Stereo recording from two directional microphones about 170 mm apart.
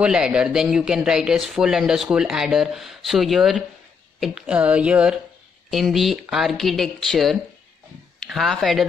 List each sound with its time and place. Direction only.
0.0 s speech: 5° right (ahead or behind)